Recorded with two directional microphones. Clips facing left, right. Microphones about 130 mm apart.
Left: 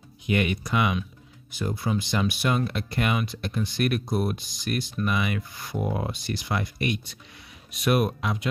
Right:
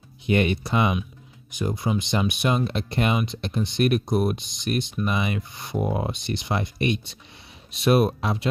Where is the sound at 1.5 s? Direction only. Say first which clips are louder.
Right 2 dB; 20° right (ahead or behind).